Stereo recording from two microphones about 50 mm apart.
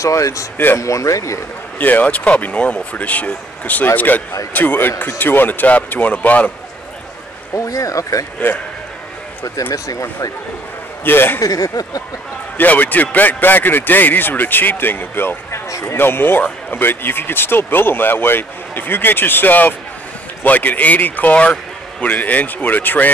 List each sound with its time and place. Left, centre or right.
0.0 s speech: left
1.8 s a man's voice: left
7.5 s speech: left
8.4 s a man's voice: left
11.1 s speech: left
12.5 s a man's voice: left
15.7 s speech: left
16.0 s a man's voice: left